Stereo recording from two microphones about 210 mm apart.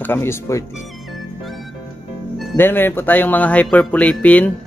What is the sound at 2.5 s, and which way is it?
Speech, 10° left (ahead or behind).